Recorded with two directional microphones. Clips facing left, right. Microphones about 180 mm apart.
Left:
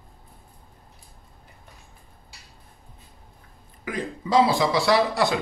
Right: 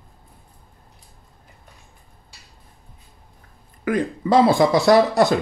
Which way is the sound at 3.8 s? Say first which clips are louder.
Right 8 dB; 55° right (ahead or behind).